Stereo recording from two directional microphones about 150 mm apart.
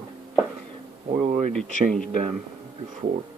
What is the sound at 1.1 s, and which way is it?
Speech, 55° right (ahead or behind).